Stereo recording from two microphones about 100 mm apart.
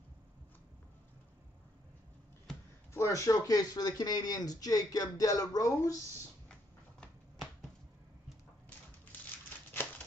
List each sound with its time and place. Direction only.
2.9 s speech: 30° left (ahead or behind)